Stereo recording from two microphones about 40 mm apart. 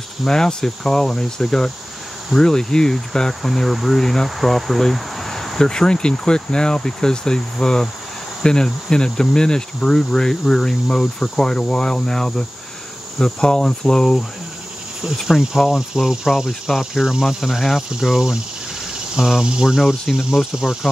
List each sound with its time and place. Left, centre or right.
0.3 s cricket: centre
5.6 s cricket: centre
15.2 s speech: centre
15.7 s speech: centre
17.4 s speech: centre